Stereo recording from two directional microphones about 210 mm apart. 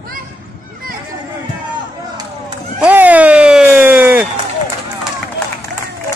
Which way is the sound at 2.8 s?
5° right (ahead or behind).